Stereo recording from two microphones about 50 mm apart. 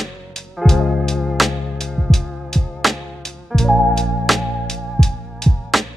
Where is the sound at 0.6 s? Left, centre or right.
Centre.